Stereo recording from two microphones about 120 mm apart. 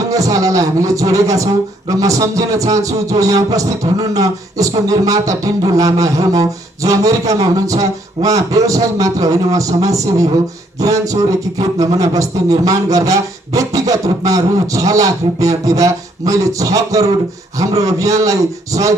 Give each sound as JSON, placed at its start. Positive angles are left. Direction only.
{"t": 0.1, "sound": "a man's voice", "side_deg": -30}